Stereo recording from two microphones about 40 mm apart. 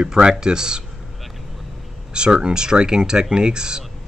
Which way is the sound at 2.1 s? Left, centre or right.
Right.